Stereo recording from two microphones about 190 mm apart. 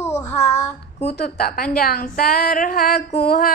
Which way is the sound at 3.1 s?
55° left (ahead or behind).